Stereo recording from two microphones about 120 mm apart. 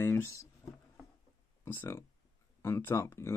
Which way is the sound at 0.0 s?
20° left (ahead or behind).